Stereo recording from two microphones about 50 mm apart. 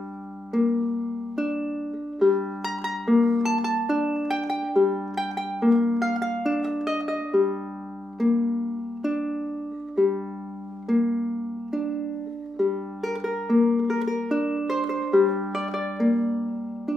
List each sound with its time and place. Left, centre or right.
0.5 s music: centre